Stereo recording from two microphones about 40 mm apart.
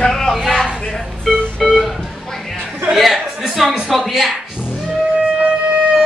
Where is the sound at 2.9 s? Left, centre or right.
Centre.